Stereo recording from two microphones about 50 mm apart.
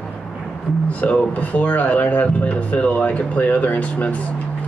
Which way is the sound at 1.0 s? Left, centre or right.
Left.